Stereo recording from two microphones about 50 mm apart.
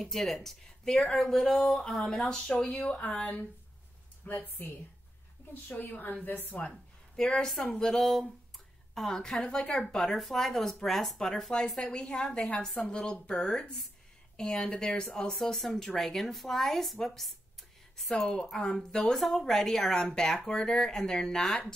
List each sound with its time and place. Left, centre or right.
0.0 s speech: centre; by 3.3 s left
4.3 s a woman's voice: left
6.7 s a sound: centre
7.7 s a woman's voice: centre